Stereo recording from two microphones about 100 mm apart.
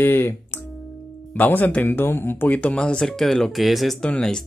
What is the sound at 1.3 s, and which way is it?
Speech, 15° left (ahead or behind).